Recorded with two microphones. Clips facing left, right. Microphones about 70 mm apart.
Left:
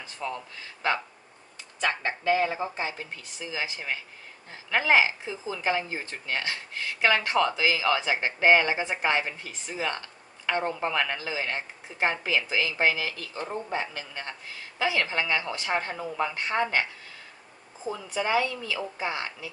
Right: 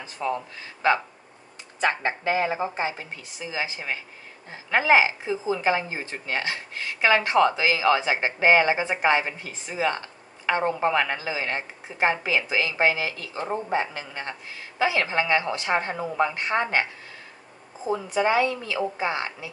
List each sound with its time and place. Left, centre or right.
0.2 s speech: right
1.8 s a woman's voice: right
17.9 s a woman's voice: right